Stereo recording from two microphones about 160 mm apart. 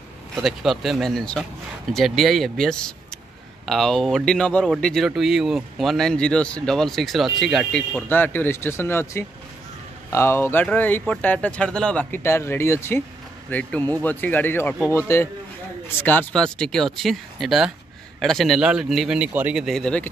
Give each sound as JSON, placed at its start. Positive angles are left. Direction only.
{"t": 0.4, "sound": "speech", "side_deg": 0}